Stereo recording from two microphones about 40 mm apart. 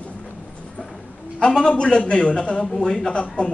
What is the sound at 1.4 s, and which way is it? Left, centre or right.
A man's voice, centre.